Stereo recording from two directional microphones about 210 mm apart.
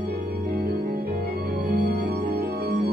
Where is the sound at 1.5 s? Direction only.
45° right (ahead or behind).